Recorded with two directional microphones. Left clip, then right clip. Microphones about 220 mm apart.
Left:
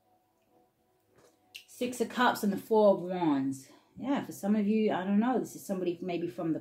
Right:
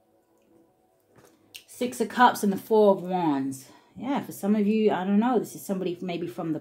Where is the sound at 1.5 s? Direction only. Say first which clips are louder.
Right 4 dB; 35° right (ahead or behind).